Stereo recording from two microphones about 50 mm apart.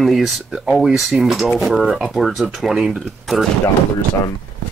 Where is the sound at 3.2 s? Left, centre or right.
Centre.